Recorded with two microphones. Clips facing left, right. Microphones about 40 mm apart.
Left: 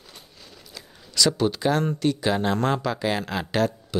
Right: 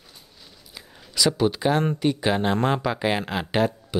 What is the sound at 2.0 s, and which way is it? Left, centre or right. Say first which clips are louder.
Speech: right 1 dB; centre.